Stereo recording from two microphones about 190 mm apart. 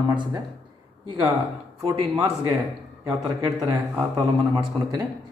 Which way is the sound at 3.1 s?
15° right (ahead or behind).